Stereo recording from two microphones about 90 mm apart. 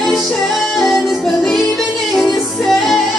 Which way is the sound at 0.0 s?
Centre (ahead or behind).